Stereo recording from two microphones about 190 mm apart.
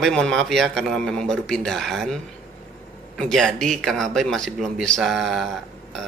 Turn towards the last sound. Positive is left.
turn(degrees=0)  # may be behind; listen again after turning